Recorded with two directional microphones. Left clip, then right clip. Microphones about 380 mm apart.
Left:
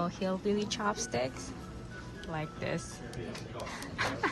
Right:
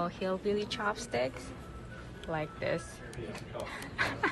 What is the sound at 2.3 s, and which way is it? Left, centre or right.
Speech, centre.